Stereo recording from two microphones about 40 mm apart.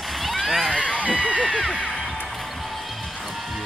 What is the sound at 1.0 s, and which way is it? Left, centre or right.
Speech, right.